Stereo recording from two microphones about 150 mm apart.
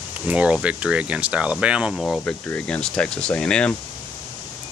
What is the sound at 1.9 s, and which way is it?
Speech, 5° left (ahead or behind).